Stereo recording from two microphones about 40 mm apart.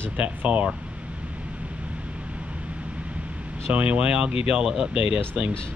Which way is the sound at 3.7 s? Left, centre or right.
Right.